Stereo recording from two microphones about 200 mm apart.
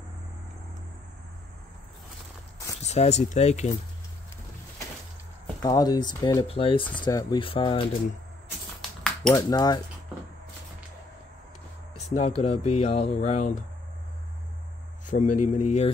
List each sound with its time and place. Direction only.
2.8 s speech: 35° left (ahead or behind)
5.6 s speech: 20° left (ahead or behind)
9.3 s speech: 20° left (ahead or behind)
12.2 s speech: 35° left (ahead or behind)
15.0 s speech: 40° left (ahead or behind)